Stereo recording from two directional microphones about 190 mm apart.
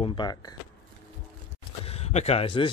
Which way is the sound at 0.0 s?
25° left (ahead or behind).